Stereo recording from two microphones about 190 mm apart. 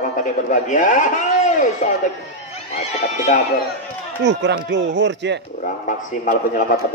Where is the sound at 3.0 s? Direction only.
55° left (ahead or behind).